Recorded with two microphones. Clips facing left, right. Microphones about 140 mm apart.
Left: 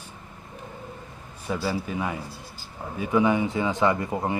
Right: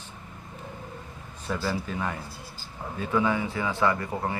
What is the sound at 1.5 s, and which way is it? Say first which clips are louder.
A man's voice: left 2 dB; 10° left (ahead or behind).